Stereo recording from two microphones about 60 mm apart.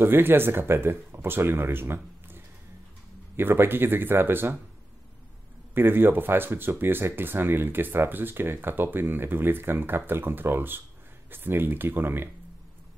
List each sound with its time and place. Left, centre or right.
0.0 s speech: right
5.8 s speech: right